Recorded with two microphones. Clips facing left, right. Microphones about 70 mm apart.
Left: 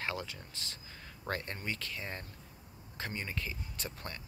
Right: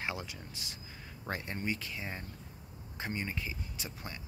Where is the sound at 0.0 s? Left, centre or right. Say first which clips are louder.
Even; centre.